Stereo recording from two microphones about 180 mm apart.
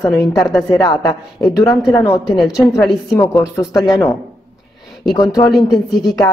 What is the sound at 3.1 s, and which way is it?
Speech, 20° left (ahead or behind).